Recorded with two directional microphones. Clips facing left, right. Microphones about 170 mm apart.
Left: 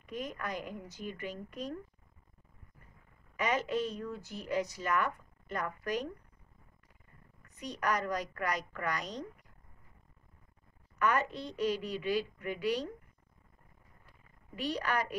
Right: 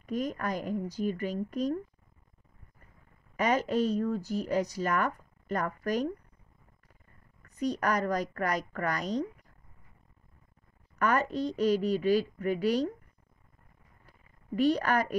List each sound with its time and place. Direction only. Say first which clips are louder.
0.0 s speech: right 7 dB; 40° right (ahead or behind)
3.3 s speech: right 5 dB; 40° right (ahead or behind)
7.5 s a woman's voice: right 5 dB; 40° right (ahead or behind)
11.0 s speech: right 4 dB; 40° right (ahead or behind)
14.0 s a sound: right 7 dB; 45° right (ahead or behind)